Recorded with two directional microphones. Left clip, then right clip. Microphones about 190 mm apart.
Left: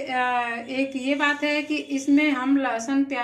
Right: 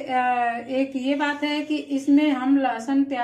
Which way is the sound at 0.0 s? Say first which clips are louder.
Right 2 dB; 25° right (ahead or behind).